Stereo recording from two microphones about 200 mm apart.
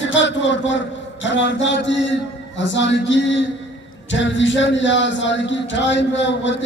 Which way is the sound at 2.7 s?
65° left (ahead or behind).